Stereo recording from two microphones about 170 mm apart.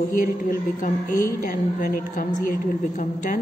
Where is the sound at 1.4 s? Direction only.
55° left (ahead or behind).